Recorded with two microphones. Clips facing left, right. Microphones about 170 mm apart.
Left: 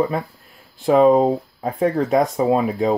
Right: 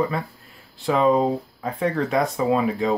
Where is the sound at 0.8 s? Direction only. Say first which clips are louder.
Left 5 dB; 45° left (ahead or behind).